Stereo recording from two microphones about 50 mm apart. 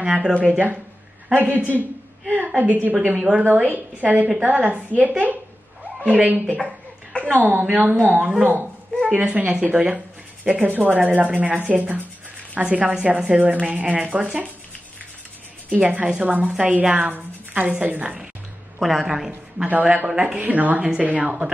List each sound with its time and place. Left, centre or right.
0.0 s speech: centre
0.5 s speech: right
3.2 s speech: right
3.4 s a woman's voice: right
6.5 s a sound: centre
7.3 s speech: right
9.2 s speech: right
15.7 s a woman's voice: right
18.8 s a woman's voice: centre
19.7 s speech: right